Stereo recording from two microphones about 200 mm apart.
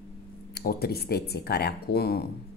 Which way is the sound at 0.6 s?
50° left (ahead or behind).